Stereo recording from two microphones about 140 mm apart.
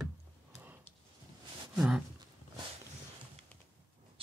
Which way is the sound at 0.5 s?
20° right (ahead or behind).